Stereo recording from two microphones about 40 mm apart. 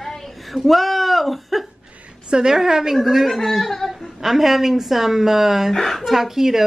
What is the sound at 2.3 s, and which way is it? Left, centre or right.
Speech, right.